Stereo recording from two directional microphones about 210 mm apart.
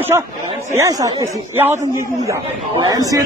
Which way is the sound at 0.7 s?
15° right (ahead or behind).